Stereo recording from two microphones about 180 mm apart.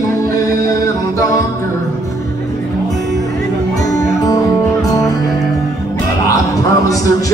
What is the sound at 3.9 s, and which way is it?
Music, 20° left (ahead or behind).